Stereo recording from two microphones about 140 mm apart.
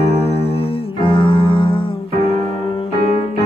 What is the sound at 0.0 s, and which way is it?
Music, 45° left (ahead or behind).